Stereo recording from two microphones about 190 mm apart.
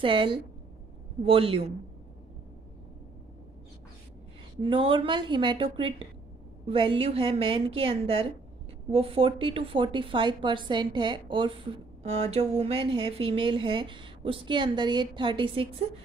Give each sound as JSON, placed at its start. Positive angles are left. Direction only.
{"t": 0.0, "sound": "a woman's voice", "side_deg": -25}
{"t": 4.6, "sound": "a woman's voice", "side_deg": -25}